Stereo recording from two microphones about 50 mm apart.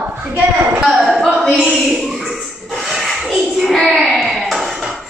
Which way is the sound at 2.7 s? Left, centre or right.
Centre.